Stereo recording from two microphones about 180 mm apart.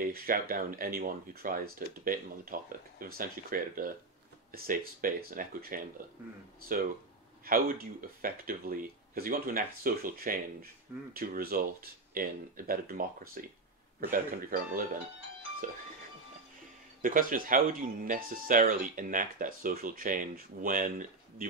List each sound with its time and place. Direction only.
0.0 s speech: 55° right (ahead or behind)
7.4 s speech: 55° right (ahead or behind)
15.6 s speech: 50° right (ahead or behind)
17.0 s speech: 50° right (ahead or behind)